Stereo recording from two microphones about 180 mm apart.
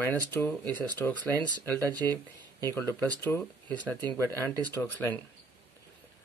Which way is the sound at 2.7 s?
15° left (ahead or behind).